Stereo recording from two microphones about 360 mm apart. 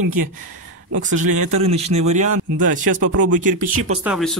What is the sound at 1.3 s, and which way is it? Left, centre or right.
Speech, right.